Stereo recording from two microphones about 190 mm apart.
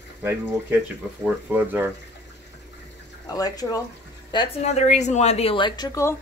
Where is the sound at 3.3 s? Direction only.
20° left (ahead or behind).